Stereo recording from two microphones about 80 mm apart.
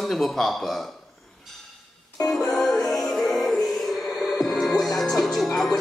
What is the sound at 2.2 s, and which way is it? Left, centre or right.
Music, centre.